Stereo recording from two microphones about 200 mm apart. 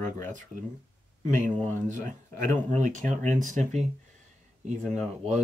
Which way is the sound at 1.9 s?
40° right (ahead or behind).